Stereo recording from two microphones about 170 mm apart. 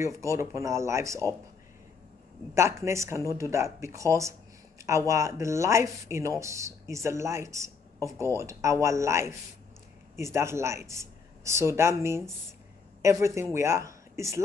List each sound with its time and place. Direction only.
0.0 s speech: 15° right (ahead or behind)
2.5 s speech: 15° right (ahead or behind)